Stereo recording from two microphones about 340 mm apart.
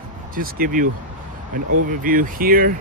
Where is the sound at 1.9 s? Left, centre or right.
Right.